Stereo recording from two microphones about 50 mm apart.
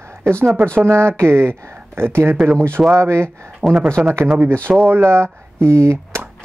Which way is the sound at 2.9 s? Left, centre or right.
Right.